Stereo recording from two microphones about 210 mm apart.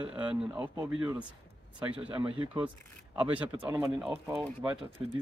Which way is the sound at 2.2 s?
20° right (ahead or behind).